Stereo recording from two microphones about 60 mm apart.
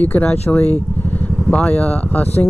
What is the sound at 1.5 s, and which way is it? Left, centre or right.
Speech, left.